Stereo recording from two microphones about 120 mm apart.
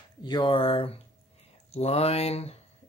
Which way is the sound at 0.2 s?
40° left (ahead or behind).